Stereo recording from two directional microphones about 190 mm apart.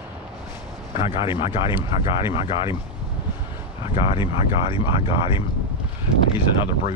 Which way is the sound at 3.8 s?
30° left (ahead or behind).